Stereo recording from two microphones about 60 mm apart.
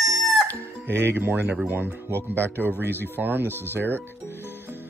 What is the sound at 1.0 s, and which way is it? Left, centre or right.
Speech, right.